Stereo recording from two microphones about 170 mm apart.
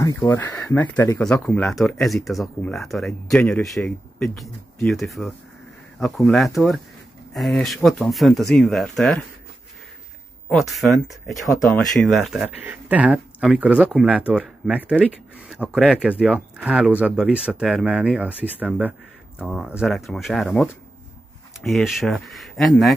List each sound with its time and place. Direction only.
0.0 s speech: 20° left (ahead or behind)
1.2 s speech: 5° left (ahead or behind)
10.5 s speech: centre (ahead or behind)
21.6 s speech: centre (ahead or behind)